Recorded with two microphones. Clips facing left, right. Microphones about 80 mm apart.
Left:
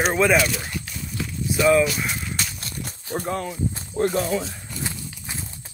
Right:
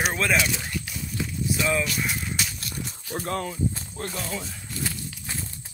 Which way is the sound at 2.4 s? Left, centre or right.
Centre.